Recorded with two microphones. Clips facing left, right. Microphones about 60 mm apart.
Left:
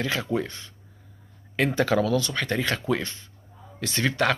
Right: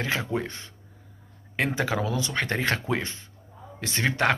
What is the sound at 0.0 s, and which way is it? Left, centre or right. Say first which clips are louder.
Speech: left 1 dB; right.